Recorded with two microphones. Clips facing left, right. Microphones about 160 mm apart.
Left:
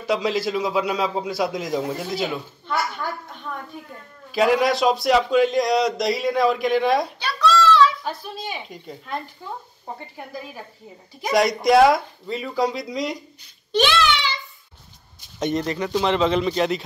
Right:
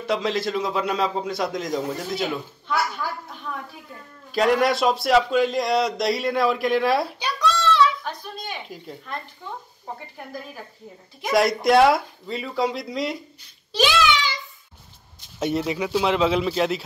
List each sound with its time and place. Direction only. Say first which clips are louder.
0.0 s a man's voice: left 1 dB; centre (ahead or behind)
4.3 s a man's voice: left 1 dB; centre (ahead or behind)
7.2 s a sound: left 4 dB; 20° right (ahead or behind)
8.0 s a man's voice: left 3 dB; 5° left (ahead or behind)
15.3 s a man's voice: even; 5° right (ahead or behind)